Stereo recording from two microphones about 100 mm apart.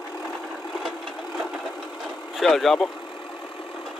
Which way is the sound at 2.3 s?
Centre (ahead or behind).